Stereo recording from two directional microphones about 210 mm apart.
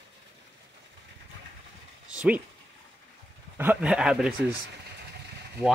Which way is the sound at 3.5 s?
5° right (ahead or behind).